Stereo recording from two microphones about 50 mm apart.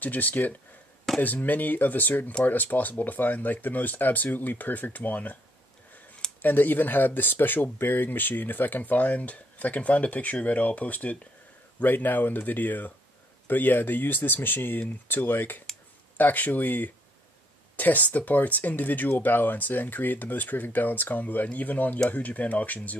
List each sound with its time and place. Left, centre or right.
0.0 s speech: left
6.4 s speech: left